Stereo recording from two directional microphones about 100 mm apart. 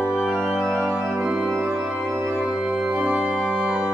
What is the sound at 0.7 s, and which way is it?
Organ, 10° right (ahead or behind).